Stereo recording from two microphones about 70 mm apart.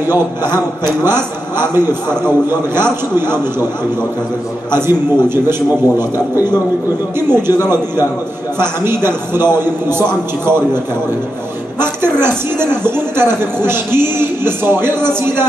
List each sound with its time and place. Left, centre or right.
0.1 s a man's voice: right
4.6 s a man's voice: right
8.5 s a man's voice: right
11.8 s a man's voice: right